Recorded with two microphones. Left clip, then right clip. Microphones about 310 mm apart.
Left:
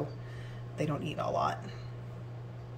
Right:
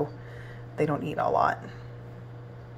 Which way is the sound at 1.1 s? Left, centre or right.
Right.